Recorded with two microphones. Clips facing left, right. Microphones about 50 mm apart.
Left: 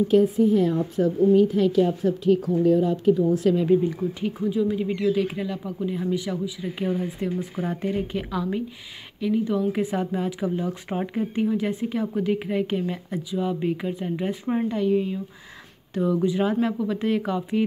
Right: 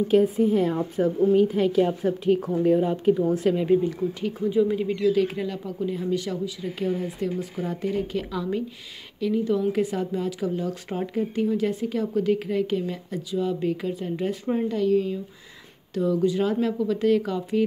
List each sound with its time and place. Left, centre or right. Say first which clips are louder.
0.1 s a woman's voice: even; centre
3.4 s a woman's voice: left 1 dB; centre
4.8 s speech: right 1 dB; centre
7.0 s speech: even; left